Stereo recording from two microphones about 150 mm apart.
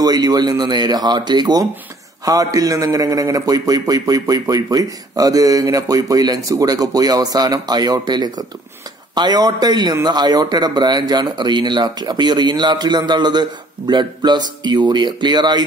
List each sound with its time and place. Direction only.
0.0 s a man's voice: 25° right (ahead or behind)